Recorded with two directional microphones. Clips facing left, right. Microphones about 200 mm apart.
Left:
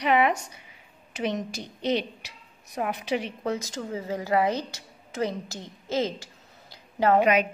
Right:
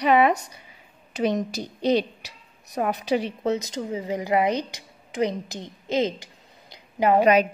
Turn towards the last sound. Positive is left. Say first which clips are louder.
# right 4 dB
turn(degrees=-35)  # may be behind; listen again after turning